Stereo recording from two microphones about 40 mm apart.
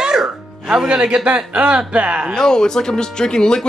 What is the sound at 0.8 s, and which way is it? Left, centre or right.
A man's voice, right.